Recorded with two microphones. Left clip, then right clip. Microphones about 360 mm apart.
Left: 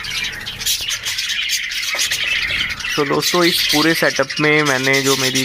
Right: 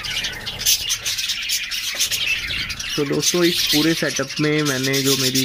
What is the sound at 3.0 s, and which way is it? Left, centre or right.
Speech, left.